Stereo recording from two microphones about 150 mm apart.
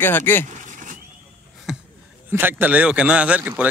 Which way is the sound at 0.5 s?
55° right (ahead or behind).